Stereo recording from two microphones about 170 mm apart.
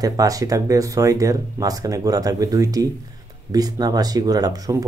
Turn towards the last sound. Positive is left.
turn(degrees=-20)  # may be behind; listen again after turning